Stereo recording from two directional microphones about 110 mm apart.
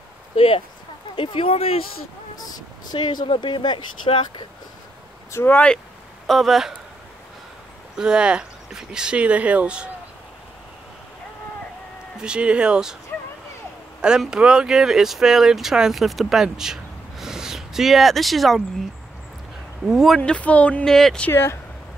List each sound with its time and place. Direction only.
0.4 s speech: 55° left (ahead or behind)
2.9 s speech: 45° left (ahead or behind)
5.3 s speech: 20° left (ahead or behind)
6.2 s speech: centre (ahead or behind)
8.0 s speech: 10° right (ahead or behind)
12.2 s speech: 10° right (ahead or behind)
14.0 s speech: 5° right (ahead or behind)
19.9 s speech: centre (ahead or behind)
20.2 s speech: 10° left (ahead or behind)
21.3 s speech: 20° left (ahead or behind)